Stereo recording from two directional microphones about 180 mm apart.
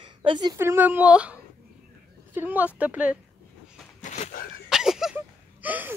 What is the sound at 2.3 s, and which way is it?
Speech, 10° right (ahead or behind).